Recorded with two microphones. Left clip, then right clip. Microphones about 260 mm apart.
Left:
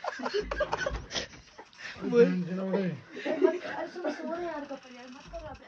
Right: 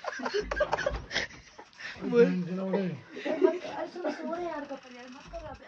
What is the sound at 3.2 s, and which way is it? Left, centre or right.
Chuckle, right.